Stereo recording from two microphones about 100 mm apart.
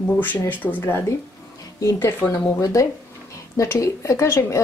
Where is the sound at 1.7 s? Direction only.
35° left (ahead or behind).